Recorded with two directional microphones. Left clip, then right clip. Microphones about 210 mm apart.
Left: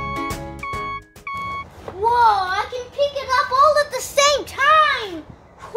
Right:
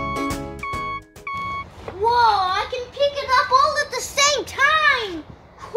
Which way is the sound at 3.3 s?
10° left (ahead or behind).